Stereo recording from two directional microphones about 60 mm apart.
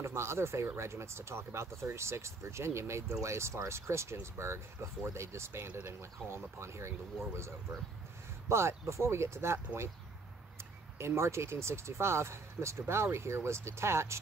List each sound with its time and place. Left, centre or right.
0.0 s speech: right
8.5 s speech: right
11.0 s speech: right